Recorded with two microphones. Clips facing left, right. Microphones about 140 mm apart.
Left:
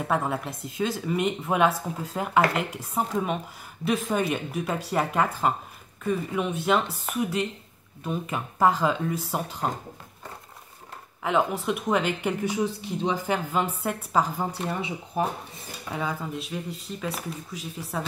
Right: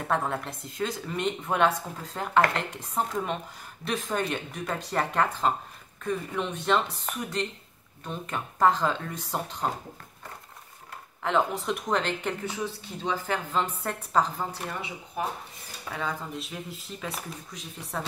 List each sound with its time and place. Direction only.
0.1 s speech: 5° left (ahead or behind)
11.2 s speech: 5° left (ahead or behind)
14.7 s speech: 25° left (ahead or behind)
15.9 s speech: 10° left (ahead or behind)